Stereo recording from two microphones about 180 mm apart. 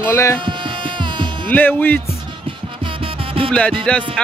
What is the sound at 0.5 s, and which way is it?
Music, 25° right (ahead or behind).